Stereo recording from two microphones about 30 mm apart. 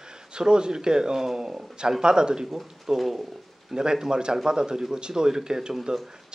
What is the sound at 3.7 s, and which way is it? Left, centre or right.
A man's voice, right.